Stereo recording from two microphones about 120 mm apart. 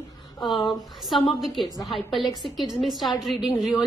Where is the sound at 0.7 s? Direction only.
Centre (ahead or behind).